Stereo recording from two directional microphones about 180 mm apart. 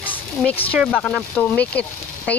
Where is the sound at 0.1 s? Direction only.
5° left (ahead or behind).